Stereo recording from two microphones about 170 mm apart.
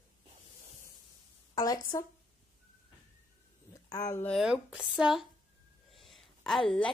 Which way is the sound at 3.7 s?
20° left (ahead or behind).